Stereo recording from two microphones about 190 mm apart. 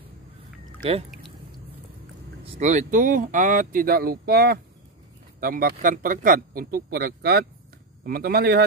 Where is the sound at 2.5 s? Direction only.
40° right (ahead or behind).